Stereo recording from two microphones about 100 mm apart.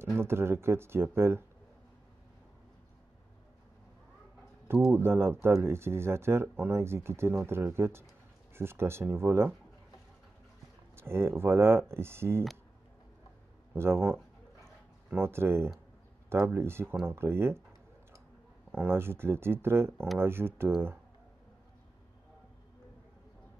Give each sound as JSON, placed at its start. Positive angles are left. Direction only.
{"t": 0.2, "sound": "speech", "side_deg": -25}
{"t": 4.8, "sound": "speech", "side_deg": -25}
{"t": 11.0, "sound": "speech", "side_deg": -25}
{"t": 13.7, "sound": "speech", "side_deg": -25}
{"t": 18.7, "sound": "speech", "side_deg": -20}